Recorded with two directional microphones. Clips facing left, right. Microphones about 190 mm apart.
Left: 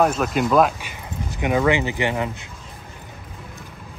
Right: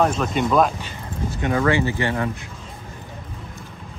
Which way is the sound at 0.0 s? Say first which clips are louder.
Left 1 dB; 5° left (ahead or behind).